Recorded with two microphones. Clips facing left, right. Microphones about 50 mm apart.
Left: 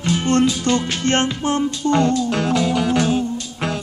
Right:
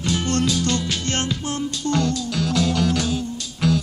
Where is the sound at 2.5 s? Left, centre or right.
Centre.